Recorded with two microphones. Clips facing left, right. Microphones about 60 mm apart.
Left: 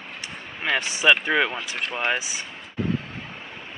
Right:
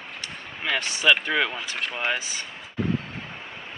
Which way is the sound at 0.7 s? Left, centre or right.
Centre.